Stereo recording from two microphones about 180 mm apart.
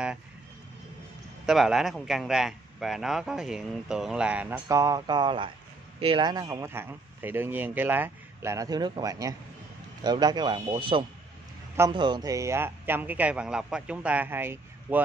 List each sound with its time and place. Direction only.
1.4 s speech: centre (ahead or behind)
4.6 s speech: 20° right (ahead or behind)